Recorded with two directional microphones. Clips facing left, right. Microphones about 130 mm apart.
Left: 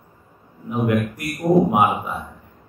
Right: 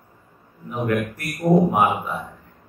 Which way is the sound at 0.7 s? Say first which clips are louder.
Left 3 dB; 15° left (ahead or behind).